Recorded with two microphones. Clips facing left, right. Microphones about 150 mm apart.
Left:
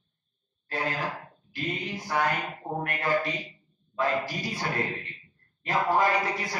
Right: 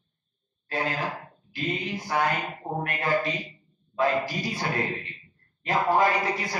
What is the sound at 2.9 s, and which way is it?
Speech, 25° right (ahead or behind).